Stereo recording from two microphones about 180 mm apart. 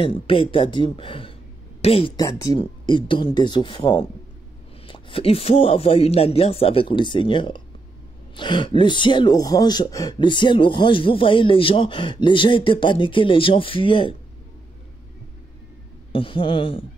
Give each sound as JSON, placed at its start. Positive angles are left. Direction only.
{"t": 0.0, "sound": "speech", "side_deg": 30}
{"t": 2.1, "sound": "a man's voice", "side_deg": 20}
{"t": 16.1, "sound": "speech", "side_deg": 30}